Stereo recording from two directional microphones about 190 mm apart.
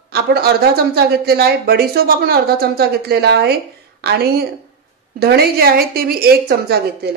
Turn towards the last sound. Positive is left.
turn(degrees=-55)  # may be behind; listen again after turning